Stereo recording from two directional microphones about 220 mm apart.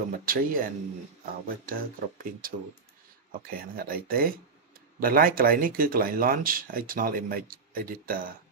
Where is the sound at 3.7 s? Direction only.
40° right (ahead or behind).